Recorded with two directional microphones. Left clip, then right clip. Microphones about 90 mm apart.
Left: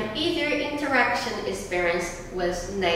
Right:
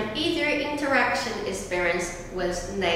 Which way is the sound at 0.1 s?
5° right (ahead or behind).